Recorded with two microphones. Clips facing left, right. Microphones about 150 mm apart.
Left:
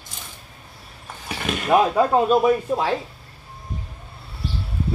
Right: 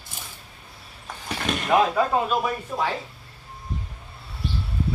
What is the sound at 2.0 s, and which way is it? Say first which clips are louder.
Speech: left 5 dB; 20° left (ahead or behind).